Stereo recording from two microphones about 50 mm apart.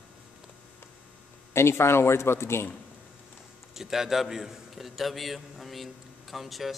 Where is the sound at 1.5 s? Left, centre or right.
Left.